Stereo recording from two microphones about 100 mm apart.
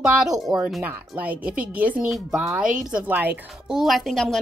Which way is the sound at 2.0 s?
5° right (ahead or behind).